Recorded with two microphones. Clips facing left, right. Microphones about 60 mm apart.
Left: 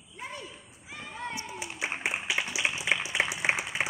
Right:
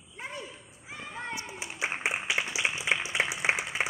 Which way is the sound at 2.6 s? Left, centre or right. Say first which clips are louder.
Even; centre.